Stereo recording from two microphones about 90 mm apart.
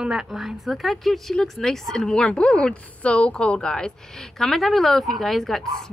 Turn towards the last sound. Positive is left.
turn(degrees=5)  # may be behind; listen again after turning